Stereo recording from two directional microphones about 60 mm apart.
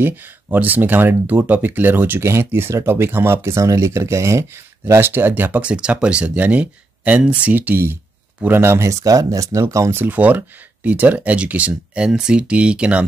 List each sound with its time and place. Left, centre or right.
0.0 s speech: right
2.2 s speech: right
3.5 s speech: right
5.0 s speech: right
5.3 s speech: right
5.7 s speech: centre
8.5 s speech: right
9.0 s speech: right
9.9 s speech: right